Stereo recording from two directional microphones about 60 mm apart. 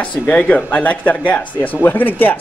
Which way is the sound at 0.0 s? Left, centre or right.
Left.